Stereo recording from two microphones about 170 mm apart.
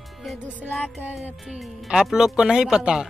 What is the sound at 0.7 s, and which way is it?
Speech, centre (ahead or behind).